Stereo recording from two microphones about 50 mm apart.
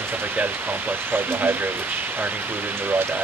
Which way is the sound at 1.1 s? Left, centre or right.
Right.